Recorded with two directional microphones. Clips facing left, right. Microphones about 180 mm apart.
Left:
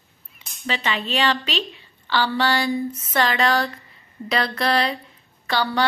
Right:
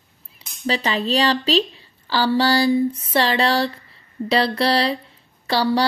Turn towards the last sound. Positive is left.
turn(degrees=-35)  # may be behind; listen again after turning